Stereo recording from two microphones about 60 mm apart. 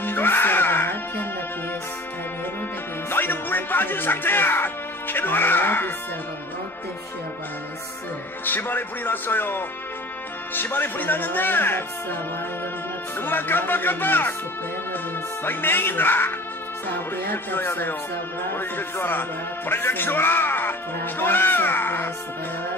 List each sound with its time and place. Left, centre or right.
0.0 s music: left
3.1 s music: left
8.5 s speech: left
13.2 s speech: left
15.4 s speech: left